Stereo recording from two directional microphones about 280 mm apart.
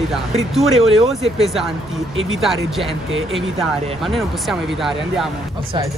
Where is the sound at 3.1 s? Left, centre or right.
Right.